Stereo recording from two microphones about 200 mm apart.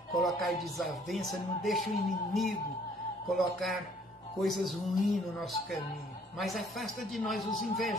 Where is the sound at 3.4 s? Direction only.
Centre (ahead or behind).